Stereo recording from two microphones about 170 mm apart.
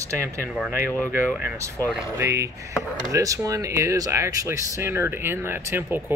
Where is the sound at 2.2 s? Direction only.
15° right (ahead or behind).